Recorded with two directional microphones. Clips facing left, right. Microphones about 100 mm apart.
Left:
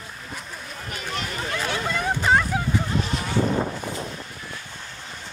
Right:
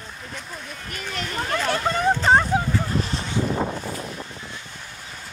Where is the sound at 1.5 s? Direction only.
45° right (ahead or behind).